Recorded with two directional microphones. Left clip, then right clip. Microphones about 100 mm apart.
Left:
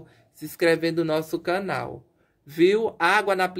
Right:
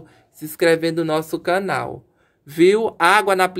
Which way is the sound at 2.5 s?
60° right (ahead or behind).